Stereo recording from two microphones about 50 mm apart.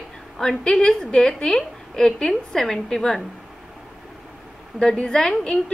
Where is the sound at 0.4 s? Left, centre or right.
Centre.